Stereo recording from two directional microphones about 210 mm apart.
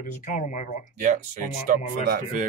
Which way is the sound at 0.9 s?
35° right (ahead or behind).